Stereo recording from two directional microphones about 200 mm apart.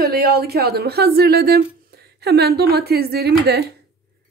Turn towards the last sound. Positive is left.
turn(degrees=-55)  # may be behind; listen again after turning